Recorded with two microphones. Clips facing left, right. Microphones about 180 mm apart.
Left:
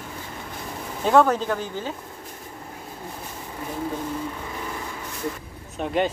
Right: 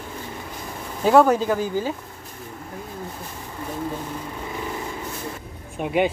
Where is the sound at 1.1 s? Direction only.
10° right (ahead or behind).